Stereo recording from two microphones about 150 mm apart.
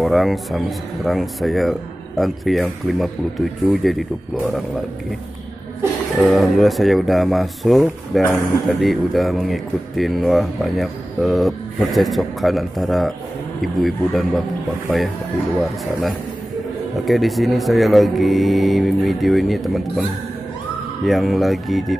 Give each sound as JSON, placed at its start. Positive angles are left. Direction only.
{"t": 0.0, "sound": "speech", "side_deg": 0}
{"t": 6.1, "sound": "speech", "side_deg": 0}
{"t": 15.6, "sound": "speech", "side_deg": 0}